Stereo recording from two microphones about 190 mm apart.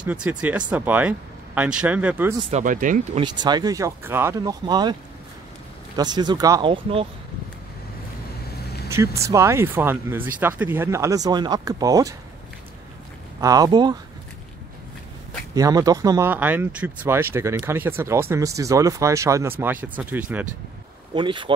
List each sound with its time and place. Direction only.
0.0 s speech: 5° right (ahead or behind)
2.5 s speech: 45° right (ahead or behind)
3.2 s speech: 25° right (ahead or behind)
5.9 s speech: 20° right (ahead or behind)
8.8 s speech: 15° right (ahead or behind)
13.4 s speech: 20° right (ahead or behind)
15.5 s speech: 20° right (ahead or behind)
21.1 s speech: 25° right (ahead or behind)